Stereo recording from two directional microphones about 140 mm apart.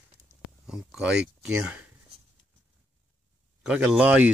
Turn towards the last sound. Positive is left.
turn(degrees=-10)  # may be behind; listen again after turning